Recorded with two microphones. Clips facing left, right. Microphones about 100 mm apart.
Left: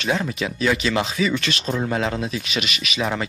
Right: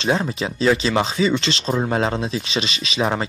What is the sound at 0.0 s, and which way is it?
Speech, 30° right (ahead or behind).